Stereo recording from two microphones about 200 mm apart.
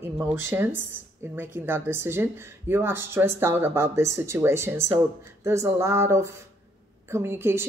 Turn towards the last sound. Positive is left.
turn(degrees=-10)  # may be behind; listen again after turning